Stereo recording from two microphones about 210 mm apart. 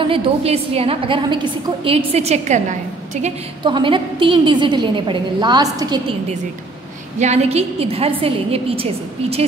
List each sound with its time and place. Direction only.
0.0 s a woman's voice: 25° right (ahead or behind)
3.6 s a woman's voice: 20° right (ahead or behind)
7.2 s a woman's voice: 30° right (ahead or behind)